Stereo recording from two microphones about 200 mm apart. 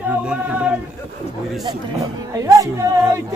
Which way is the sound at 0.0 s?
5° right (ahead or behind).